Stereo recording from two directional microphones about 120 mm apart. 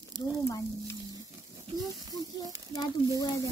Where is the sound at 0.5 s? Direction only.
25° left (ahead or behind).